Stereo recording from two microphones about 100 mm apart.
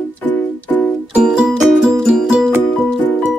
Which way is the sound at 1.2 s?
5° right (ahead or behind).